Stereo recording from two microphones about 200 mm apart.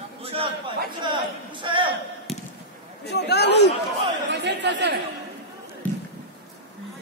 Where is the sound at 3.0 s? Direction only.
55° left (ahead or behind).